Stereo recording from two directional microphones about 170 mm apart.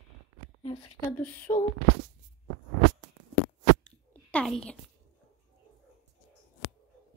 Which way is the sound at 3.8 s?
5° left (ahead or behind).